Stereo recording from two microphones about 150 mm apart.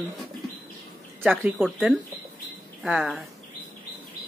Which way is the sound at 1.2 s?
10° right (ahead or behind).